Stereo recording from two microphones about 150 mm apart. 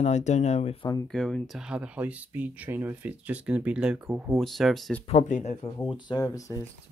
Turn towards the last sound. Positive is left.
turn(degrees=20)  # may be behind; listen again after turning